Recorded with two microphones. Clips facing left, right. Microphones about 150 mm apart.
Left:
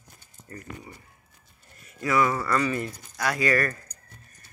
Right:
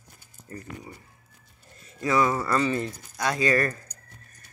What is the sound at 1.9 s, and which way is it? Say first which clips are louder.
Speech: right 1 dB; 25° right (ahead or behind).